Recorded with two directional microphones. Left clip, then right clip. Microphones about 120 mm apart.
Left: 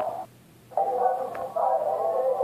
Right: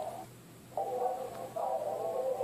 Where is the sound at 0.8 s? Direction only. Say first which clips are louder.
Left 10 dB; 30° left (ahead or behind).